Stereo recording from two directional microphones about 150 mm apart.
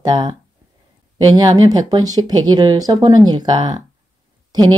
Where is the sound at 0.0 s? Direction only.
25° right (ahead or behind).